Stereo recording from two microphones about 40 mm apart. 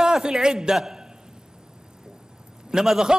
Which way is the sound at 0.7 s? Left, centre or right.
Centre.